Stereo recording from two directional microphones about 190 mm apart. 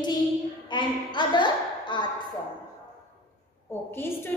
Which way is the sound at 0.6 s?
25° left (ahead or behind).